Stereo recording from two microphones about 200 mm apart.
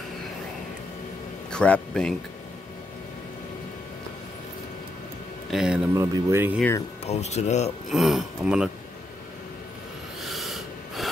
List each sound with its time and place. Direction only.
1.5 s speech: 5° left (ahead or behind)
5.5 s speech: centre (ahead or behind)
7.1 s speech: 35° left (ahead or behind)
7.9 s speech: centre (ahead or behind)
10.2 s snort: centre (ahead or behind)